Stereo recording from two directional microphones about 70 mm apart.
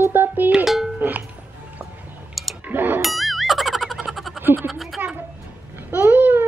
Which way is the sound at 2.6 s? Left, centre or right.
Right.